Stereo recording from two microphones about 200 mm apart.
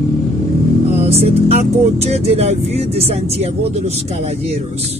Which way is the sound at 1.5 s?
30° right (ahead or behind).